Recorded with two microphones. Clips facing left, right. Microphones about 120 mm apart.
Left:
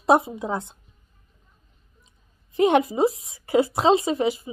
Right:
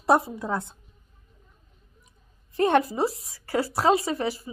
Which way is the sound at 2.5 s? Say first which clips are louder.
Left 3 dB; 15° left (ahead or behind).